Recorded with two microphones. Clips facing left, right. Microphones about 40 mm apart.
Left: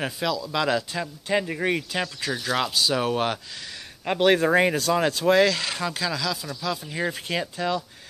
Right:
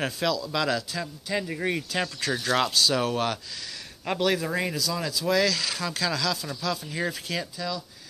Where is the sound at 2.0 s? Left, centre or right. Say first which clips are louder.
Even; centre; by 5.3 s left.